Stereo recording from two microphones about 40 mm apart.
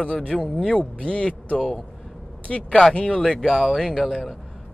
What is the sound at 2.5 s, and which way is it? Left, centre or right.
Speech, centre.